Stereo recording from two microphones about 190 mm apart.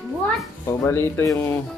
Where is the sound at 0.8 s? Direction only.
15° left (ahead or behind).